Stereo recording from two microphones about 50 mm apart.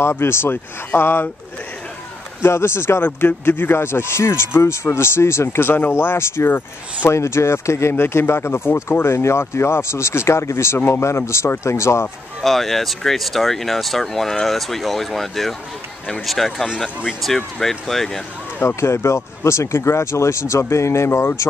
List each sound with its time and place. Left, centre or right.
0.0 s speech: left
2.4 s speech: left
3.0 s speech: left
7.9 s speech: left
11.0 s speech: left
12.4 s speech: centre
18.8 s speech: left